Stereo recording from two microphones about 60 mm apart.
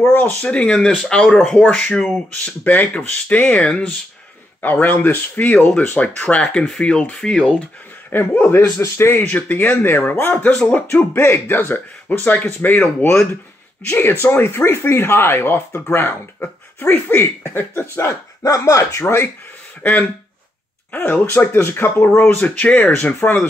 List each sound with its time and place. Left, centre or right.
0.4 s speech: centre
1.6 s speech: left
1.9 s speech: centre
2.4 s speech: left
4.6 s speech: left; by 7.6 s centre
8.1 s speech: left
9.3 s speech: left
11.1 s speech: left
13.1 s speech: left
18.0 s speech: left
18.6 s speech: left
19.8 s speech: left
22.4 s speech: left